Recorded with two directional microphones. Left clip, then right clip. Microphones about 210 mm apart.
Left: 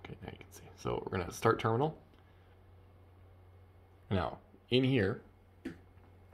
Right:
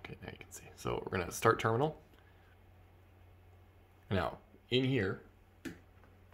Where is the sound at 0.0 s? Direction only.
Centre (ahead or behind).